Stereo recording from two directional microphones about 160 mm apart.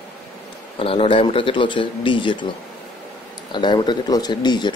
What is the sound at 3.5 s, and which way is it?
Speech, 30° left (ahead or behind).